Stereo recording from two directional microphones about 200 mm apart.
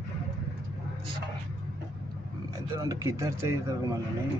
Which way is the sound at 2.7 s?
15° right (ahead or behind).